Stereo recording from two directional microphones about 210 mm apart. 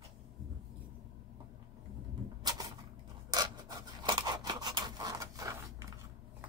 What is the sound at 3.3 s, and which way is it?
Scissors, 20° right (ahead or behind).